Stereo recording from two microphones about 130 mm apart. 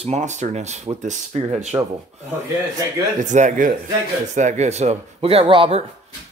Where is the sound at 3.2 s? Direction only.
70° right (ahead or behind).